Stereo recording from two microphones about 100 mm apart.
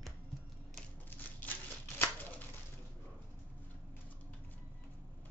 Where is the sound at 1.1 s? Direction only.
20° left (ahead or behind).